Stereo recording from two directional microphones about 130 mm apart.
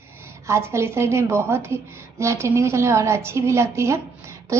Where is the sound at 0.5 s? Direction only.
20° right (ahead or behind).